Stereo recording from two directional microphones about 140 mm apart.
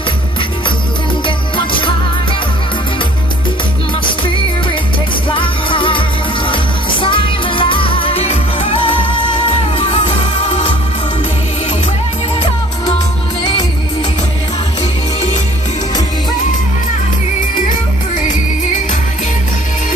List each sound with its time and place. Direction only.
1.2 s music: 35° left (ahead or behind)
5.3 s music: 35° left (ahead or behind)